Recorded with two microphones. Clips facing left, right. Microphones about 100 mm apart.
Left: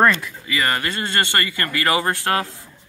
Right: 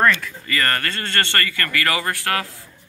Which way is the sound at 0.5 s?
10° left (ahead or behind).